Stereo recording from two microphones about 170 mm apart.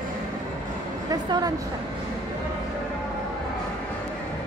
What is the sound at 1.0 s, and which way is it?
Speech, 25° right (ahead or behind).